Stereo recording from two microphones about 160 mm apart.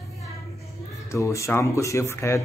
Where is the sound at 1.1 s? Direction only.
20° left (ahead or behind).